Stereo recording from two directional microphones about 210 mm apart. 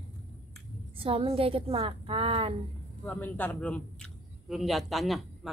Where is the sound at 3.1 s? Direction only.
10° left (ahead or behind).